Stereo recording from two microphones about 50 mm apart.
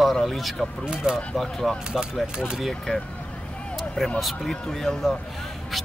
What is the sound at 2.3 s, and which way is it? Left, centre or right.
Speech, centre.